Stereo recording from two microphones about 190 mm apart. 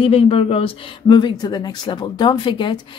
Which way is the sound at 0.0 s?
30° left (ahead or behind).